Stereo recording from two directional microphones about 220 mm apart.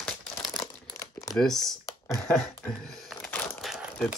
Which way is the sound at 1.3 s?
Centre (ahead or behind).